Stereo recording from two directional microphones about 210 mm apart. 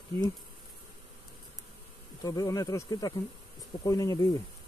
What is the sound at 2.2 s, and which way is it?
Speech, 15° left (ahead or behind).